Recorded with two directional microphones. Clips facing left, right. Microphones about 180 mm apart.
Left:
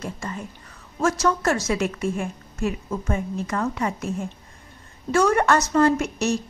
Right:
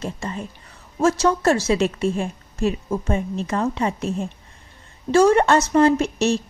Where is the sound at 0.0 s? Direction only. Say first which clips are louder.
Right 3 dB; 25° right (ahead or behind).